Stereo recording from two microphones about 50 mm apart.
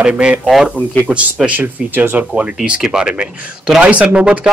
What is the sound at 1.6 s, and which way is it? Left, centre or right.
Speech, right.